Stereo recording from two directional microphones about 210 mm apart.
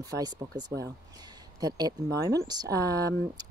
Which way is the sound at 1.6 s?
20° right (ahead or behind).